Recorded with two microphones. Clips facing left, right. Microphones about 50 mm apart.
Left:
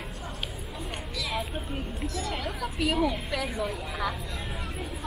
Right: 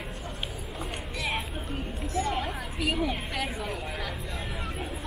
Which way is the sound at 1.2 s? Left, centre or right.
Right.